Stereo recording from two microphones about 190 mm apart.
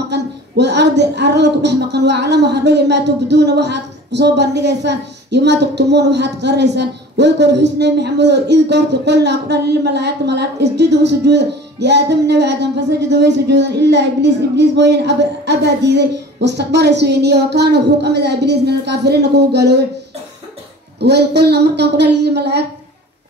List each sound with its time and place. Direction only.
0.1 s speech: 65° right (ahead or behind)
21.0 s speech: 60° right (ahead or behind)